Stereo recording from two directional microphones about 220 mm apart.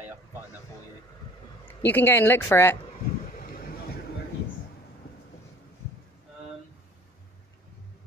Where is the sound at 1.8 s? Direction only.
10° left (ahead or behind).